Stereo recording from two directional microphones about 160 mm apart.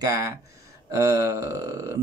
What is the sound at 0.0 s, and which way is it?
Speech, 20° right (ahead or behind).